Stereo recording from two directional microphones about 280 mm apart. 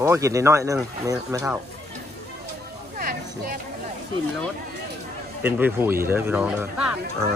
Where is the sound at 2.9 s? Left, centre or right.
Right.